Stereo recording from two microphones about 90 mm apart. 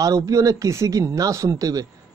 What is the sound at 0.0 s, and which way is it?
Speech, 40° right (ahead or behind).